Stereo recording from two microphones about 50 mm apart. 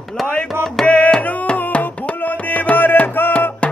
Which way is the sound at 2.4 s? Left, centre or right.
Left.